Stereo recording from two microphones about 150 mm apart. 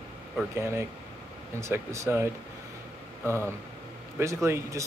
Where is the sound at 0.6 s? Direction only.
15° right (ahead or behind).